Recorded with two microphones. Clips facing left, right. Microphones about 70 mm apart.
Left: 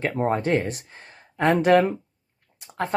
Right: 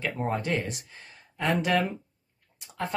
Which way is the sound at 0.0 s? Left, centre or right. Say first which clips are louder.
Left 6 dB; left.